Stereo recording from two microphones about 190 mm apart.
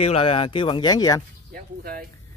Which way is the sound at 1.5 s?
50° right (ahead or behind).